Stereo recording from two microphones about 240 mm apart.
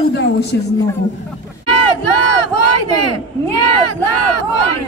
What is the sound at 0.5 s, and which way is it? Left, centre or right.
Speech, left.